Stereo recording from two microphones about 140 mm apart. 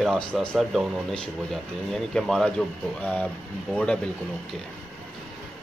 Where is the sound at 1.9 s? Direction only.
5° left (ahead or behind).